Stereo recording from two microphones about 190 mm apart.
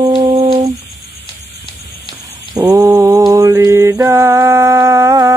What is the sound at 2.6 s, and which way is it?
Mantra, 15° right (ahead or behind).